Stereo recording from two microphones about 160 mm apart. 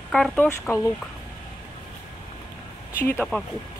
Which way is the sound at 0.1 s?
Centre (ahead or behind).